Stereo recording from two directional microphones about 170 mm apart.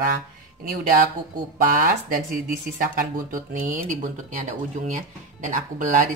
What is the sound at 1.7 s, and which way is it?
Speech, 55° right (ahead or behind).